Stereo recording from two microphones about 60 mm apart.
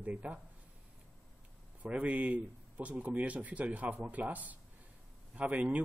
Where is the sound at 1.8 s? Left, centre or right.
Right.